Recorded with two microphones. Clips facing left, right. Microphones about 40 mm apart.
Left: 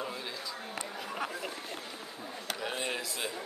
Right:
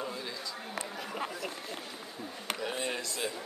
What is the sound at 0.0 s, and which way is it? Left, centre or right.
Chatter, centre.